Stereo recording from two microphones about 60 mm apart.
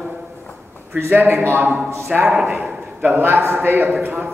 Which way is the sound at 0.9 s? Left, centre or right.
Right.